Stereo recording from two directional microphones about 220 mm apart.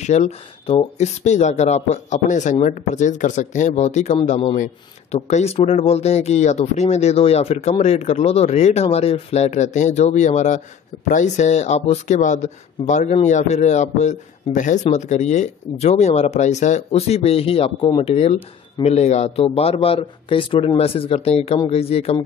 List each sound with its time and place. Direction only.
0.0 s speech: 30° left (ahead or behind)